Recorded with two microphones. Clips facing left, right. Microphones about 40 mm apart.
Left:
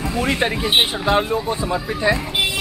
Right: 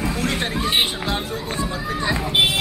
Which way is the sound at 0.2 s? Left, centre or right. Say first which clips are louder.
Left 7 dB; centre.